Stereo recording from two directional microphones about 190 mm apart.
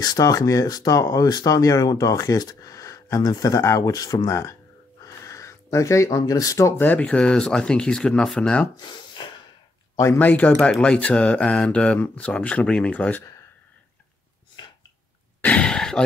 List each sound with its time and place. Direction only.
0.0 s speech: 20° left (ahead or behind)
8.7 s a sound: 25° left (ahead or behind)
9.9 s speech: 10° left (ahead or behind)
15.4 s gasp: 5° left (ahead or behind)